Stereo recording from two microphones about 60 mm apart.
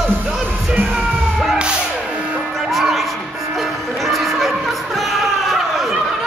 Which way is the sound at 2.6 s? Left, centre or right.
Centre.